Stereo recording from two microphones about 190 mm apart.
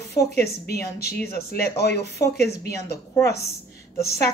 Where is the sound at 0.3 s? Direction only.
55° left (ahead or behind).